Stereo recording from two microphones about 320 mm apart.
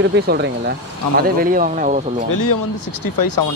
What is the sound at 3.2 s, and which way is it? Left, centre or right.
Speech, left.